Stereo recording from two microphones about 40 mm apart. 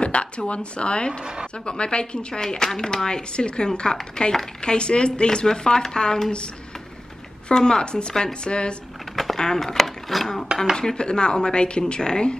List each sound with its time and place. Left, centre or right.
0.0 s a sound: left
0.5 s speech: left
1.2 s a woman's voice: right
1.7 s speech: left
7.4 s speech: centre
9.1 s a sound: centre
9.7 s speech: centre
10.8 s speech: centre